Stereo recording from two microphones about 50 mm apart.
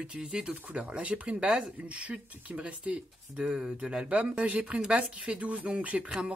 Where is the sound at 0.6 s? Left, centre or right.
Right.